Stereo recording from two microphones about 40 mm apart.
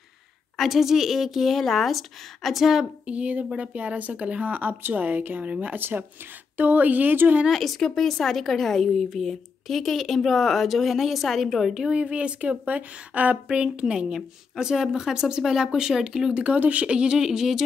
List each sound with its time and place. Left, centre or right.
0.6 s speech: centre
3.1 s speech: right
5.4 s speech: right
7.5 s speech: centre
11.9 s speech: right
13.9 s a woman's voice: centre
16.5 s speech: right
16.8 s a woman's voice: right